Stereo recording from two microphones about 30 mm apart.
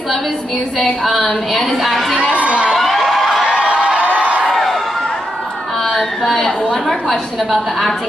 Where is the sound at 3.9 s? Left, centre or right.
Right.